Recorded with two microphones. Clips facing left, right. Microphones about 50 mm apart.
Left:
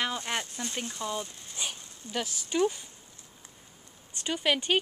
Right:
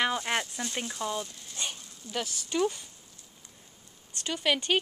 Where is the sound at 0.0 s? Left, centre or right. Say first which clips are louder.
Right 3 dB; centre.